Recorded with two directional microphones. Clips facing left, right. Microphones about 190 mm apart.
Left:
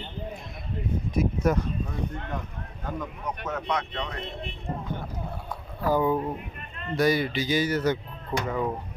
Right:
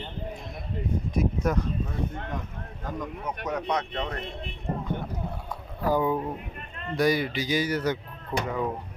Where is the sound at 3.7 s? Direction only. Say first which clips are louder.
Right 2 dB; 35° right (ahead or behind).